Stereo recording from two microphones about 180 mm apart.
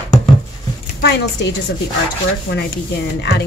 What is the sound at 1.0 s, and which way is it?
Speech, 65° left (ahead or behind).